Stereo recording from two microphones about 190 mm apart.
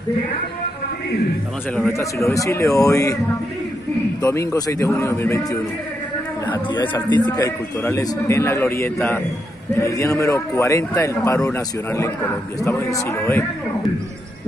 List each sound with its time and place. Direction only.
2.0 s a man's voice: 15° left (ahead or behind)
4.2 s a man's voice: 15° left (ahead or behind)
7.1 s a man's voice: 20° left (ahead or behind)